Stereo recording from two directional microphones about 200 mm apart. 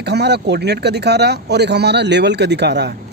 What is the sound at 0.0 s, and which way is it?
Speech, 55° right (ahead or behind).